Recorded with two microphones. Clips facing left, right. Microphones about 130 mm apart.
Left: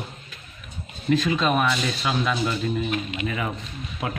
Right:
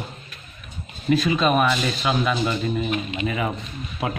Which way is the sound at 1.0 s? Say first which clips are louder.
Right 2 dB; 10° right (ahead or behind).